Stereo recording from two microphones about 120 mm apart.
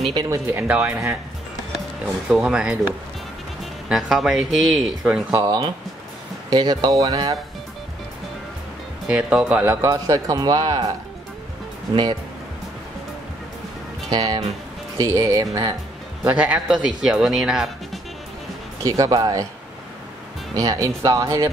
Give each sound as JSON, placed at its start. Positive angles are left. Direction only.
{"t": 0.1, "sound": "speech", "side_deg": -35}
{"t": 0.5, "sound": "speech", "side_deg": -20}
{"t": 0.7, "sound": "speech", "side_deg": -5}
{"t": 2.2, "sound": "speech", "side_deg": -10}
{"t": 3.9, "sound": "speech", "side_deg": -5}
{"t": 5.3, "sound": "speech", "side_deg": -30}
{"t": 9.0, "sound": "speech", "side_deg": -5}
{"t": 9.8, "sound": "speech", "side_deg": -30}
{"t": 11.9, "sound": "speech", "side_deg": -40}
{"t": 14.1, "sound": "speech", "side_deg": -35}
{"t": 16.3, "sound": "speech", "side_deg": -10}
{"t": 18.8, "sound": "speech", "side_deg": -30}
{"t": 20.5, "sound": "speech", "side_deg": -30}